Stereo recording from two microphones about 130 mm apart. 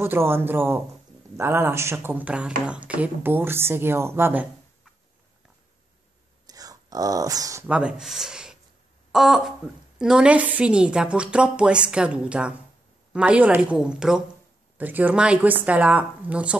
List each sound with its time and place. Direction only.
0.0 s speech: 20° right (ahead or behind)
6.4 s whispering: 30° right (ahead or behind)
7.6 s speech: 10° right (ahead or behind)